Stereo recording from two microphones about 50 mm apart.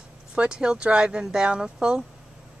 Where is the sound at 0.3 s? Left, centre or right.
Centre.